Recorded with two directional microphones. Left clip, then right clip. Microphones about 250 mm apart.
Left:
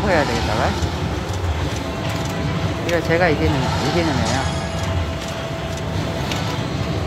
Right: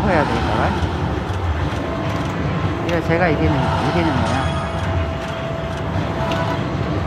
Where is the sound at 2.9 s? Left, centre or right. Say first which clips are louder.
Left 1 dB; centre.